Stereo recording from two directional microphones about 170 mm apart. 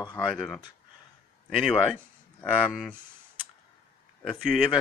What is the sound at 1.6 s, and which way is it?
Speech, centre (ahead or behind).